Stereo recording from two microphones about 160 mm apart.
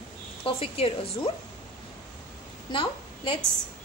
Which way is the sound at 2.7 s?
30° left (ahead or behind).